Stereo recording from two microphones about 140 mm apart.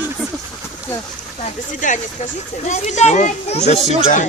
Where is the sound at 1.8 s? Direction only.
65° left (ahead or behind).